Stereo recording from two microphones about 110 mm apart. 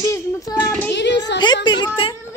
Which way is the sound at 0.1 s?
30° left (ahead or behind).